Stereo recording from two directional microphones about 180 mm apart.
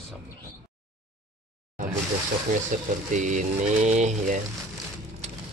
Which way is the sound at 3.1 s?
45° right (ahead or behind).